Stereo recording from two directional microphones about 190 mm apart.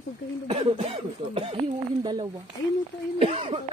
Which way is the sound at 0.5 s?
30° right (ahead or behind).